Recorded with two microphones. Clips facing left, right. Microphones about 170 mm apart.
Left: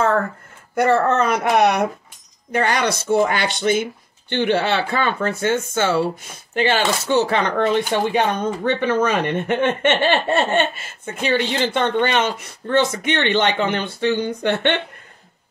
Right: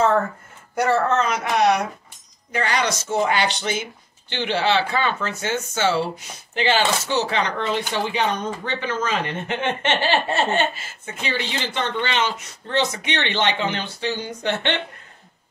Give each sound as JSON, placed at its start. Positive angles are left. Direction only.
{"t": 0.7, "sound": "speech", "side_deg": 55}